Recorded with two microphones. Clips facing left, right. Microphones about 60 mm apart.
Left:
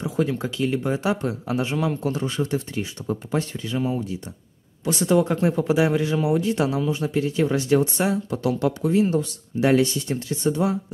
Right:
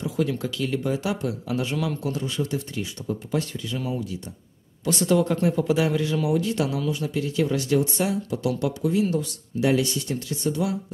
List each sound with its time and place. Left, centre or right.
0.0 s speech: left